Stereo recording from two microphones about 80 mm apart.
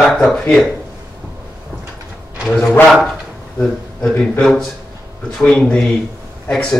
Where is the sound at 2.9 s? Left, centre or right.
Centre.